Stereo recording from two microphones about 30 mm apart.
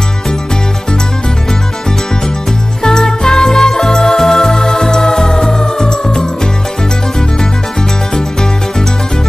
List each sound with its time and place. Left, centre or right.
2.8 s music: left
8.1 s music: left